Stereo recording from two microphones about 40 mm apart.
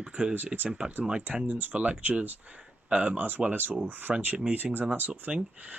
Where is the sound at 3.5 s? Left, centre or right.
Right.